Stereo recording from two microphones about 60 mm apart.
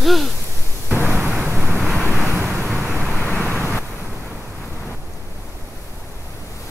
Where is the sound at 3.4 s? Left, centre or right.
Left.